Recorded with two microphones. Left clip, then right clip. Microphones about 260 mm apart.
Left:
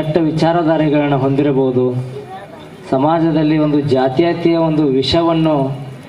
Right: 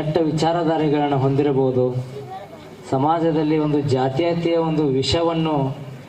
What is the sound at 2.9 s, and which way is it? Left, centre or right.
A man's voice, left.